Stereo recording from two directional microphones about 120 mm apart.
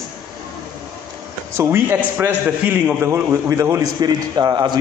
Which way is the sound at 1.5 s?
20° right (ahead or behind).